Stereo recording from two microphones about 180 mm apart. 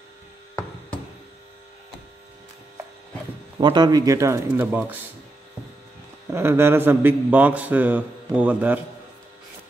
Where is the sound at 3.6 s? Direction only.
25° right (ahead or behind).